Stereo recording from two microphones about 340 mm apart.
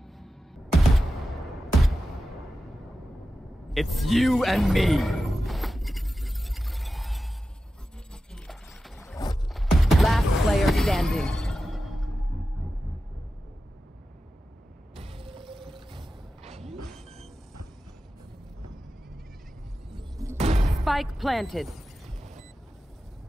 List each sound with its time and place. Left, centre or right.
0.7 s a sound: centre
3.7 s speech: centre
4.1 s music: centre
8.3 s wild animals: centre
9.5 s a sound: centre
15.0 s mechanisms: centre
15.7 s music: centre
20.0 s music: centre
20.8 s music: centre